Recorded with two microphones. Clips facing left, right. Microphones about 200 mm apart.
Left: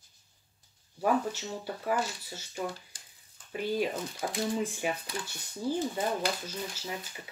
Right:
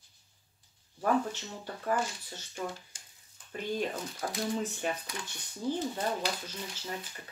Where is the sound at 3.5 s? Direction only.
10° left (ahead or behind).